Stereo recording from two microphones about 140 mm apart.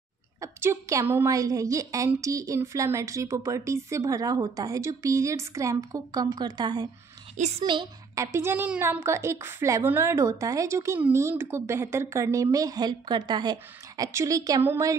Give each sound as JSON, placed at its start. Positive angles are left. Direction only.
{"t": 0.4, "sound": "a woman's voice", "side_deg": -20}
{"t": 7.3, "sound": "a woman's voice", "side_deg": -55}
{"t": 7.6, "sound": "a woman's voice", "side_deg": -35}
{"t": 8.1, "sound": "a woman's voice", "side_deg": -20}